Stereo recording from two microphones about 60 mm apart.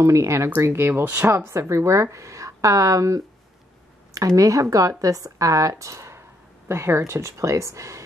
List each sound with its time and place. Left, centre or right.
0.0 s a woman's voice: right
0.6 s a woman's voice: right
4.4 s a woman's voice: right